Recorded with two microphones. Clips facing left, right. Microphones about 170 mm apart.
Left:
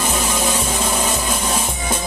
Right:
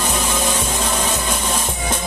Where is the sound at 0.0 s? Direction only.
10° left (ahead or behind).